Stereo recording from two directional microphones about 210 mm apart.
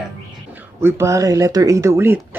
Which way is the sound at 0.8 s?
10° right (ahead or behind).